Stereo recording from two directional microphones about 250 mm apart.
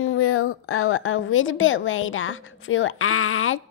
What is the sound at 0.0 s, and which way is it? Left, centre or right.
A woman's voice, left.